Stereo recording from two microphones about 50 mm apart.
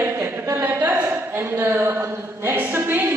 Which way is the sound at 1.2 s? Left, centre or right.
Right.